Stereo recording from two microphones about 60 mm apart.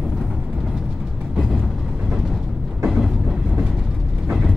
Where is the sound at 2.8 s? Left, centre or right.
Centre.